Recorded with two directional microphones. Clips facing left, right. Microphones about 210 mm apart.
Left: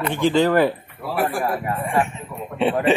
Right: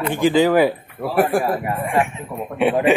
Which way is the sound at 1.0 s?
45° right (ahead or behind).